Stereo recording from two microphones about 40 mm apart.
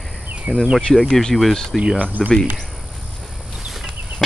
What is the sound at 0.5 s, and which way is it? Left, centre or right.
Speech, centre.